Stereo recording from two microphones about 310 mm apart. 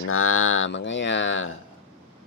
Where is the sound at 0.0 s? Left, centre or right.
Left.